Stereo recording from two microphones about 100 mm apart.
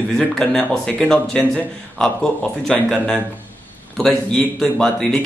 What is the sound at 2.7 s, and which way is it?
Speech, 5° left (ahead or behind).